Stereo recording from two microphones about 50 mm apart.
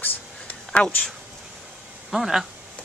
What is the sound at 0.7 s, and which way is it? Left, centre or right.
Speech, left.